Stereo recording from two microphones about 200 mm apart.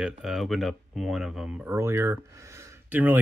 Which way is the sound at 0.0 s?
Centre (ahead or behind).